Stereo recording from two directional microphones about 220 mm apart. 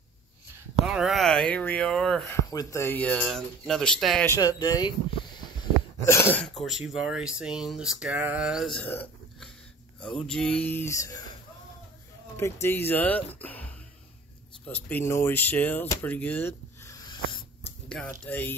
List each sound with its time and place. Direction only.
0.8 s speech: centre (ahead or behind)
4.3 s speech: 15° left (ahead or behind)
12.6 s speech: 10° left (ahead or behind)
14.7 s speech: 10° left (ahead or behind)
17.8 s a sound: 5° left (ahead or behind)
18.2 s speech: 10° left (ahead or behind)